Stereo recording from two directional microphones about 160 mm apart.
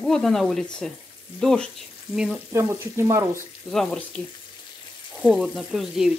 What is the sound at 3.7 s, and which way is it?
Sizzle, centre (ahead or behind).